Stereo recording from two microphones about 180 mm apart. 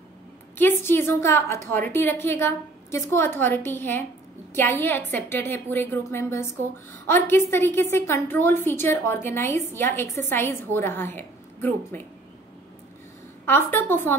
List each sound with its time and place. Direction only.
0.6 s a woman's voice: 10° left (ahead or behind)
13.5 s a woman's voice: 10° left (ahead or behind)